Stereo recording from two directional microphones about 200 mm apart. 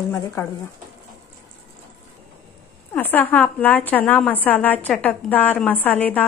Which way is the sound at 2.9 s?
10° left (ahead or behind).